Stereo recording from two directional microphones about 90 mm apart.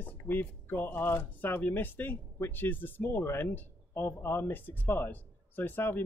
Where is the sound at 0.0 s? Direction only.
20° left (ahead or behind).